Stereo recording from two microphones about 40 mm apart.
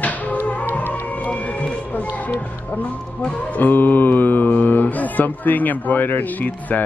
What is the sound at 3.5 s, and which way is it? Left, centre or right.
Speech, left.